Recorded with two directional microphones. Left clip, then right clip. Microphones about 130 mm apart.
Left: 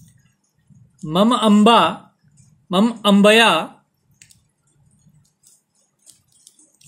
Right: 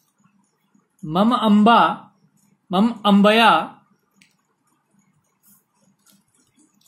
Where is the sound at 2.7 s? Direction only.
65° left (ahead or behind).